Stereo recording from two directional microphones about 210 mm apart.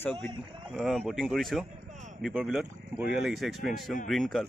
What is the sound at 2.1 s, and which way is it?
Speech, centre (ahead or behind).